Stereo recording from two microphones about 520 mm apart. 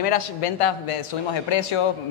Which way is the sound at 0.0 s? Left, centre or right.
Left.